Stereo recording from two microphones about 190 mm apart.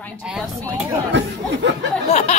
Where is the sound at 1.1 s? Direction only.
70° right (ahead or behind).